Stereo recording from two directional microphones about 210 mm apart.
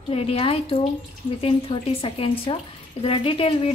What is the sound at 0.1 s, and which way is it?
Speech, 25° left (ahead or behind).